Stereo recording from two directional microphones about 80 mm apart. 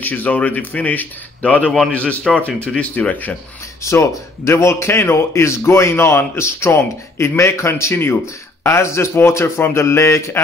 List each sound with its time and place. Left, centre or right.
0.0 s speech: left
3.8 s a man's voice: left